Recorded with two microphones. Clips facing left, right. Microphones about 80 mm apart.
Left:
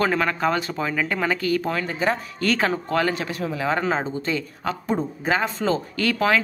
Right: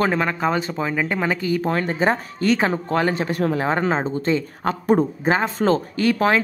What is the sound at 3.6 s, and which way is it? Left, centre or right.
A woman's voice, right.